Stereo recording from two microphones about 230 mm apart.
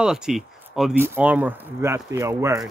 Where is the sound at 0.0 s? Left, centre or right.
Centre.